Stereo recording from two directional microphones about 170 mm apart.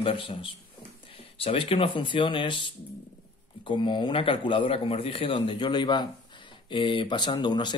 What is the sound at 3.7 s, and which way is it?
Speech, 25° left (ahead or behind).